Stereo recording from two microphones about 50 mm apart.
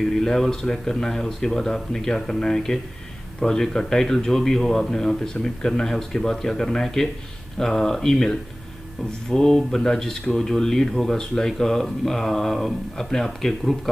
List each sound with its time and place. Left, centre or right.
0.2 s speech: centre